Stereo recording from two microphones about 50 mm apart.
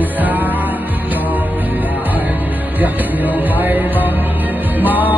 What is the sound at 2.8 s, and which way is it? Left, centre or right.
Music, right.